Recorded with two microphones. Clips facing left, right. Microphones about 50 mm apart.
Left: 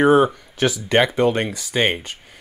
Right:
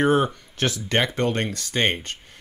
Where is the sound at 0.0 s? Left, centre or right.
Centre.